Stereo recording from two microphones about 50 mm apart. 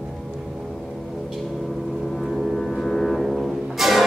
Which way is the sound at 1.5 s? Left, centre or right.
Centre.